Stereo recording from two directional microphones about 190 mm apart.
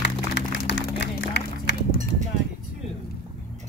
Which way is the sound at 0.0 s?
65° left (ahead or behind).